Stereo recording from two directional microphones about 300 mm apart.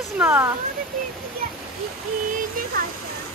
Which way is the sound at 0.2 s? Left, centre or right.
Centre.